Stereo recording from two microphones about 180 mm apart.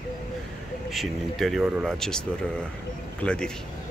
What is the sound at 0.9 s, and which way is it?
Speech, centre (ahead or behind).